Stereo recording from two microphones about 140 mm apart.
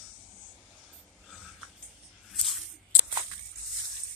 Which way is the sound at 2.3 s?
Centre (ahead or behind).